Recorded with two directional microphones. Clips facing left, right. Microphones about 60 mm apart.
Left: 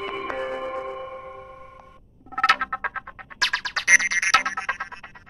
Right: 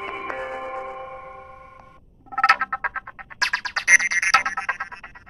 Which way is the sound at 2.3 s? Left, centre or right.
Right.